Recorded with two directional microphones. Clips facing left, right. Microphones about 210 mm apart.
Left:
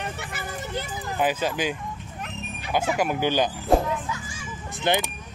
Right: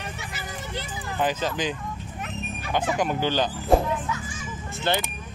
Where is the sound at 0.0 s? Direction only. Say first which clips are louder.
Left 3 dB; 55° left (ahead or behind).